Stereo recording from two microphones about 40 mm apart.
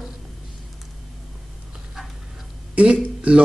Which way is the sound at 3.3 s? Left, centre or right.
Right.